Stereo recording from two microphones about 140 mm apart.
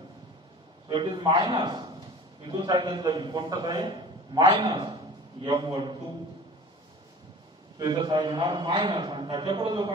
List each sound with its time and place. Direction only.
0.8 s a man's voice: 30° right (ahead or behind)
7.8 s a man's voice: 35° right (ahead or behind)